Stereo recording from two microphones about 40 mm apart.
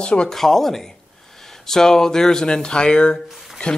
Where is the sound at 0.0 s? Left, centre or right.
Left.